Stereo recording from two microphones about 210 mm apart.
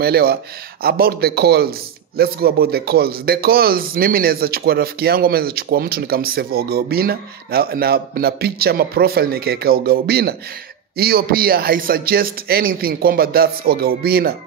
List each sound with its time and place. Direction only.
0.0 s speech: 50° right (ahead or behind)